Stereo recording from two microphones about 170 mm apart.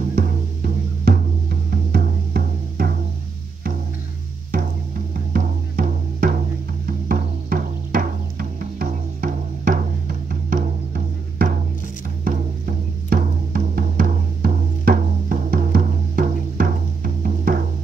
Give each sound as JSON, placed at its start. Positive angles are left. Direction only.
{"t": 0.1, "sound": "music", "side_deg": -60}
{"t": 5.3, "sound": "music", "side_deg": -55}